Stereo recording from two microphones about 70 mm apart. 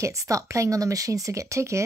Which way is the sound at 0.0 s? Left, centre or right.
Right.